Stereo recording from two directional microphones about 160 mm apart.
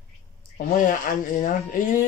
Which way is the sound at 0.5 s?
55° left (ahead or behind).